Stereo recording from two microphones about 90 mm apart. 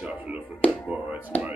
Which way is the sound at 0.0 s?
15° right (ahead or behind).